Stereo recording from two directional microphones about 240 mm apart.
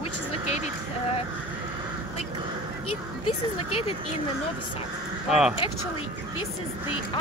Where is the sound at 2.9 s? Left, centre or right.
Left.